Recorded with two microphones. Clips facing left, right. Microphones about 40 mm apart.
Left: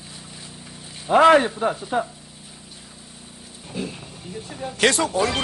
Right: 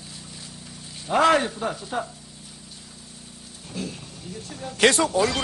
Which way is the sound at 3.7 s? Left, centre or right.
Centre.